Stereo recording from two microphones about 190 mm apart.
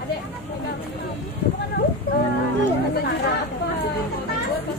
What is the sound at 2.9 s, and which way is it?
Speech, 55° left (ahead or behind).